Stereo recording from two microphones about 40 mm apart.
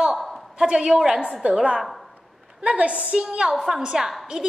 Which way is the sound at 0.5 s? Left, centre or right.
Centre.